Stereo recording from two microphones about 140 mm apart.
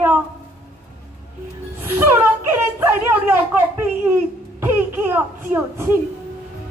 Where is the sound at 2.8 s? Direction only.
15° right (ahead or behind).